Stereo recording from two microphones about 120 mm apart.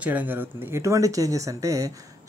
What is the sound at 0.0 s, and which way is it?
Speech, 15° right (ahead or behind).